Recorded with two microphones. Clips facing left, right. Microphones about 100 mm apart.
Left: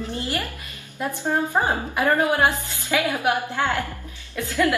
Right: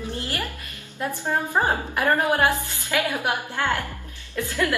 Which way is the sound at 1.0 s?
15° left (ahead or behind).